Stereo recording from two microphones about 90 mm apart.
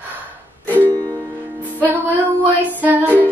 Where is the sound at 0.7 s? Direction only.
20° left (ahead or behind).